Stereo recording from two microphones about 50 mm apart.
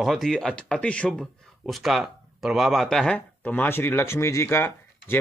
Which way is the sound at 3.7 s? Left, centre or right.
Left.